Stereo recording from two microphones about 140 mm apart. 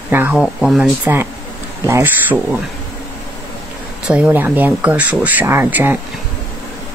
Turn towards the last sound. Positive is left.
turn(degrees=-15)  # may be behind; listen again after turning